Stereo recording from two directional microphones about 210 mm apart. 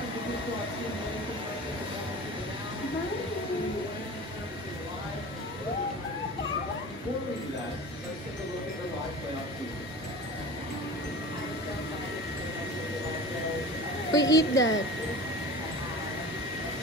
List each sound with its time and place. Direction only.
14.1 s a woman's voice: 15° left (ahead or behind)
14.5 s speech: 60° left (ahead or behind)